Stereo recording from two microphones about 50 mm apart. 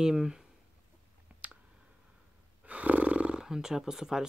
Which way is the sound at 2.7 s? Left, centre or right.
Right.